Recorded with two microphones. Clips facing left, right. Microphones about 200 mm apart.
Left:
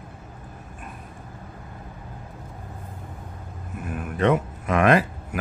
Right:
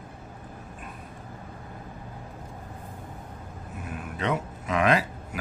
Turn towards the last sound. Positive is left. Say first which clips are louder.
# left 5 dB
turn(degrees=55)  # may be behind; listen again after turning